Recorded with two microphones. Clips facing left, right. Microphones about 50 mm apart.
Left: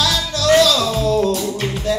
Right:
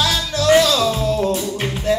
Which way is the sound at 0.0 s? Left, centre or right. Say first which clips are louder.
Even; right.